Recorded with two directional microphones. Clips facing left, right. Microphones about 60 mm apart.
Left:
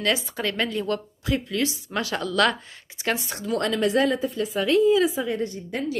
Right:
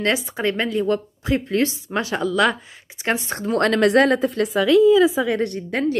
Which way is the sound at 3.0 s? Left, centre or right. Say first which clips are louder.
Right 4 dB; right.